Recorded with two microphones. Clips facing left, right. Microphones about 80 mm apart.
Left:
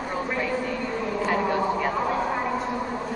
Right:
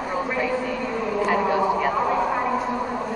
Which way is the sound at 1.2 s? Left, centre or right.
Centre.